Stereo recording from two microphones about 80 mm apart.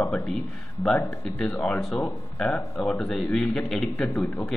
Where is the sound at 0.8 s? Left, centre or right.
Left.